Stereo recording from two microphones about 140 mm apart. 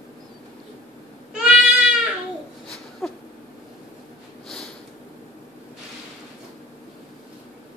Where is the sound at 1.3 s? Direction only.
5° right (ahead or behind).